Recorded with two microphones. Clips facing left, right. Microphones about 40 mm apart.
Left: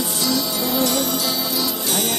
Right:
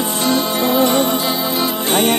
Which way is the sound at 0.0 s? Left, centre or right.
Right.